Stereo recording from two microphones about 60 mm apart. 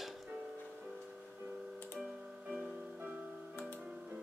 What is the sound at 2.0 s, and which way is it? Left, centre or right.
Music, centre.